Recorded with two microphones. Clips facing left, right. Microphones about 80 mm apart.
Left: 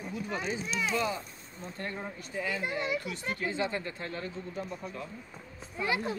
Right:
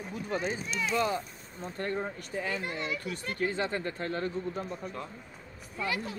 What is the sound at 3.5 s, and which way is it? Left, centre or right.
Speech, right.